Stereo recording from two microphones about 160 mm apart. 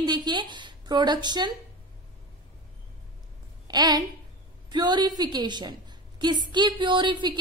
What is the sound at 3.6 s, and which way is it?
A woman's voice, 25° right (ahead or behind).